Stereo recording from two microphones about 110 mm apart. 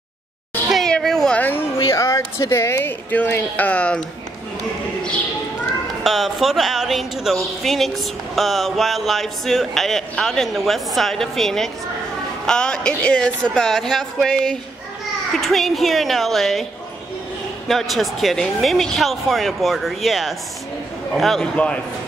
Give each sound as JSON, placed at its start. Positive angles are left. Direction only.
{"t": 0.7, "sound": "a sound", "side_deg": 5}
{"t": 1.8, "sound": "speech", "side_deg": 30}
{"t": 6.0, "sound": "speech", "side_deg": 0}
{"t": 17.6, "sound": "speech", "side_deg": 0}